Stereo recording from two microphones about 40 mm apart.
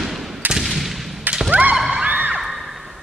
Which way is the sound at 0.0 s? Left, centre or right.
Centre.